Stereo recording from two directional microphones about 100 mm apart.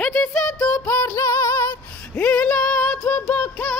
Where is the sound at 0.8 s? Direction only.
30° left (ahead or behind).